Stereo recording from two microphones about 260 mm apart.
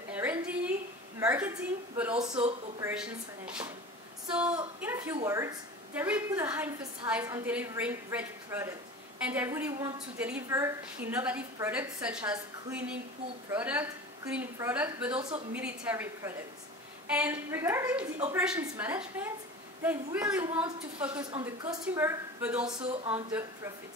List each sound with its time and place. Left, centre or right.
0.1 s a sound: centre
1.2 s a woman's voice: centre
15.1 s speech: right
15.5 s a woman's voice: centre
21.2 s a woman's voice: centre
22.8 s speech: right